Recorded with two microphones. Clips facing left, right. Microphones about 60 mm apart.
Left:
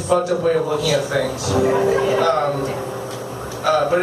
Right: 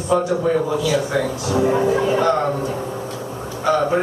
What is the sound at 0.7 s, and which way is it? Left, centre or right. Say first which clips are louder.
A man's voice: even; left.